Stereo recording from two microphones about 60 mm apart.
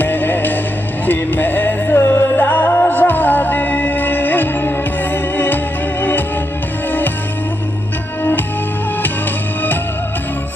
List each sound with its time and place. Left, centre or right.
0.0 s music: left